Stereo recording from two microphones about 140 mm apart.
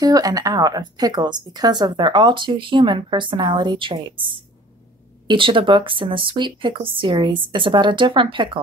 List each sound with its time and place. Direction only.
0.0 s speech: 25° right (ahead or behind)